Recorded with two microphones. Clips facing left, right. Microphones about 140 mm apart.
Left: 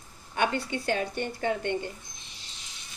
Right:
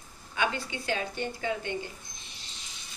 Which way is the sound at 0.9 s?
55° left (ahead or behind).